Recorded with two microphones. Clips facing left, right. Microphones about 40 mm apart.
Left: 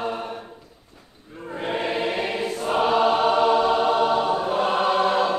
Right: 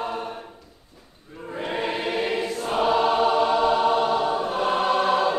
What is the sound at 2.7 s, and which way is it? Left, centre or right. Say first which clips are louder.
Choir: left 2 dB; centre.